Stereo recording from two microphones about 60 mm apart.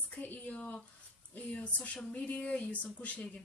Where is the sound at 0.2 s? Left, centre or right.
Left.